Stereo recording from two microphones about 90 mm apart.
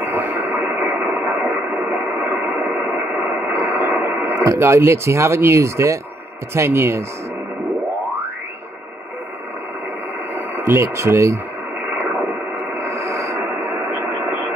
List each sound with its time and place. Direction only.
0.0 s radio: 20° right (ahead or behind)
2.4 s radio: 30° right (ahead or behind)
3.4 s a sound: 35° right (ahead or behind)
4.4 s speech: 30° right (ahead or behind)
10.3 s speech: 25° right (ahead or behind)
11.9 s radio: 25° right (ahead or behind)
12.7 s a sound: 35° right (ahead or behind)
13.6 s radio: 20° right (ahead or behind)